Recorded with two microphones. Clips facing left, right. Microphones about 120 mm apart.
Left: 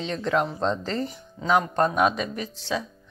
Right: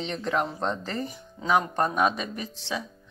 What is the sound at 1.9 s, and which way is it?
Speech, 5° left (ahead or behind).